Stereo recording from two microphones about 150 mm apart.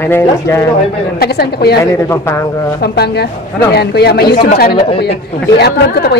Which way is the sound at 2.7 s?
90° left.